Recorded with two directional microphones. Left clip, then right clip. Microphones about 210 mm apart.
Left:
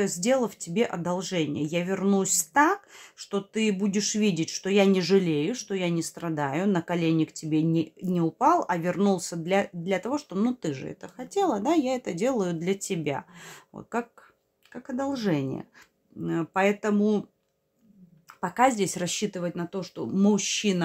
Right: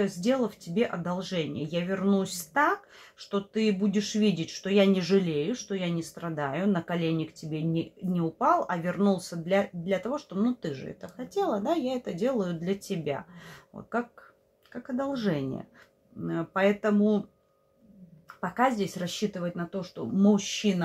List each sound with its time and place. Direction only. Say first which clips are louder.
0.0 s speech: left 3 dB; 30° left (ahead or behind)
18.4 s speech: left 3 dB; 35° left (ahead or behind)